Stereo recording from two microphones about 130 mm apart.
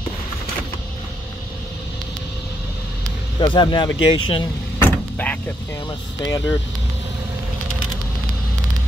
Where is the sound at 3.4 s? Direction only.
35° left (ahead or behind).